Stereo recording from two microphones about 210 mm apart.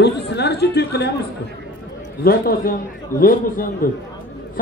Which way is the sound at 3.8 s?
45° left (ahead or behind).